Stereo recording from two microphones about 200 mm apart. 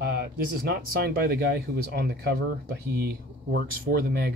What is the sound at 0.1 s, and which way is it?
Speech, 50° right (ahead or behind).